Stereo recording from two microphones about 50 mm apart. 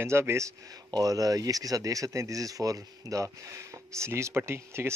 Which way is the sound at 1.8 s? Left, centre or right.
Right.